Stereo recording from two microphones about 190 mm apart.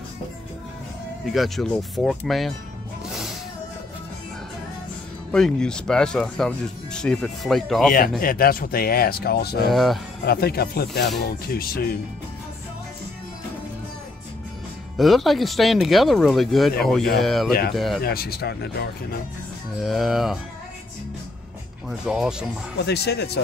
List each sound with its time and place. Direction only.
1.2 s speech: centre (ahead or behind)
5.3 s speech: 5° left (ahead or behind)
8.2 s speech: 50° left (ahead or behind)
9.7 s speech: centre (ahead or behind)
10.2 s speech: 55° left (ahead or behind)
15.0 s speech: centre (ahead or behind)
17.5 s speech: 55° left (ahead or behind)
17.7 s speech: centre (ahead or behind)
18.0 s speech: 55° left (ahead or behind)
19.8 s speech: centre (ahead or behind)
21.8 s speech: centre (ahead or behind)
22.8 s speech: 60° left (ahead or behind)